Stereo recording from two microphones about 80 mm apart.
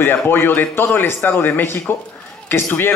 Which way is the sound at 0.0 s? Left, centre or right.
Left.